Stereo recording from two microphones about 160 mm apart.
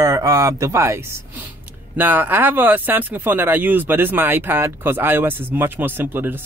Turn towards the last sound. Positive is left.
turn(degrees=-10)  # may be behind; listen again after turning